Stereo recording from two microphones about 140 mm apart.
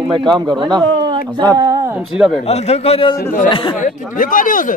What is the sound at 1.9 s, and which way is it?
Speech, 5° right (ahead or behind).